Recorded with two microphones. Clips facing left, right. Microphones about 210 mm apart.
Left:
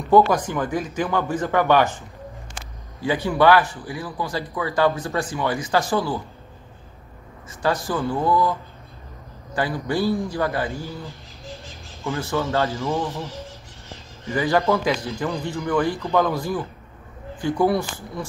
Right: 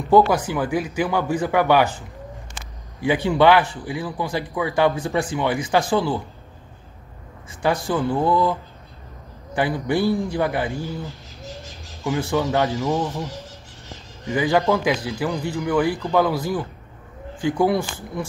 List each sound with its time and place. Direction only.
0.1 s speech: 10° right (ahead or behind)
3.3 s a man's voice: 20° right (ahead or behind)
7.6 s a man's voice: 15° right (ahead or behind)
9.6 s a man's voice: 20° right (ahead or behind)
11.4 s a sound: centre (ahead or behind)
12.0 s speech: 15° right (ahead or behind)
14.3 s speech: 15° right (ahead or behind)